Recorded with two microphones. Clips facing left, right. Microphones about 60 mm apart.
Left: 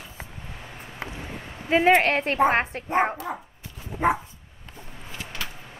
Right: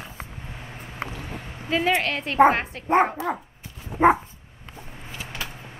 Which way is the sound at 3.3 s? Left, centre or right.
Right.